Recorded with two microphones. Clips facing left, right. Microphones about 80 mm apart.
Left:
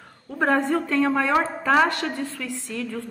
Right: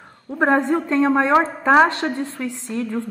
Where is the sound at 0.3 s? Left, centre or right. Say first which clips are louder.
Right 3 dB; right.